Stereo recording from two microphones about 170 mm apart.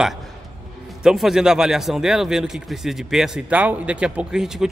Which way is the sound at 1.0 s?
Centre (ahead or behind).